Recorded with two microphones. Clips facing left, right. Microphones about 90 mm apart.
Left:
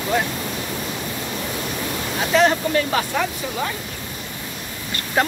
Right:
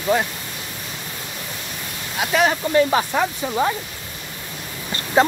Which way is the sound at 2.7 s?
20° right (ahead or behind).